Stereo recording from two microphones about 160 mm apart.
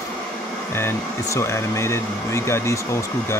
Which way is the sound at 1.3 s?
15° left (ahead or behind).